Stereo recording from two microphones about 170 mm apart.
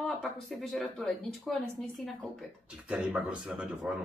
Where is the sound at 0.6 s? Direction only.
Centre (ahead or behind).